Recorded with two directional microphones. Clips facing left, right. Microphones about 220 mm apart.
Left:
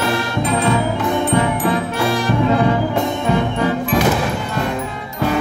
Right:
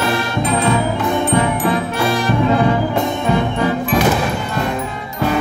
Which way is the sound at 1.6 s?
30° left (ahead or behind).